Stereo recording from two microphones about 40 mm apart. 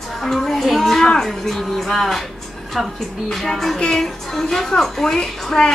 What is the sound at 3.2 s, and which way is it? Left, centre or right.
A woman's voice, centre.